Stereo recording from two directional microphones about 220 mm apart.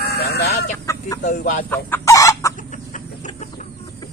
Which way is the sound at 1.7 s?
15° left (ahead or behind).